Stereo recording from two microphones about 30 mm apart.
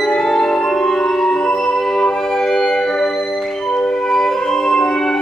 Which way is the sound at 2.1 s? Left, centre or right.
Centre.